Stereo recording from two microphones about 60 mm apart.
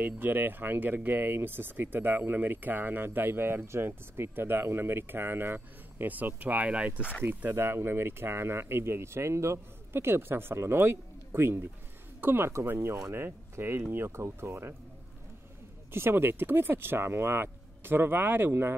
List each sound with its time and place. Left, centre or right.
0.0 s speech: right
7.2 s speech: right
15.9 s speech: right